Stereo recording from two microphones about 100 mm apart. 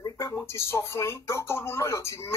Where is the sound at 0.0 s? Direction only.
35° left (ahead or behind).